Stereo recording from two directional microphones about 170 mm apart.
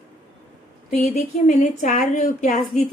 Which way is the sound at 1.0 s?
45° left (ahead or behind).